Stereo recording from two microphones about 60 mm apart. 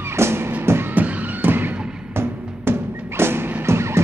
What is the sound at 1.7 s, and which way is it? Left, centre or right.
Music, centre.